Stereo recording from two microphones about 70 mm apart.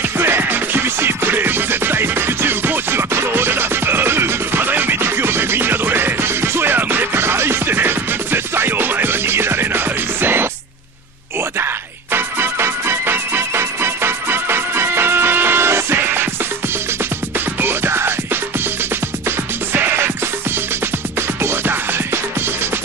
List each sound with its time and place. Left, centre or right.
0.2 s music: right
12.1 s music: right
17.6 s music: right
19.7 s music: right
21.4 s music: right